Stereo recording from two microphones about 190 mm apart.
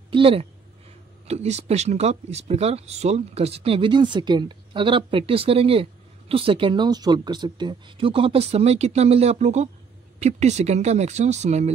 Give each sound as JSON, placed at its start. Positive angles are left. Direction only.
{"t": 0.1, "sound": "a woman's voice", "side_deg": -30}